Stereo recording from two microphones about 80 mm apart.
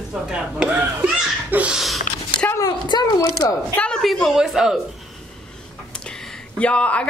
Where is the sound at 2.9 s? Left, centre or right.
Left.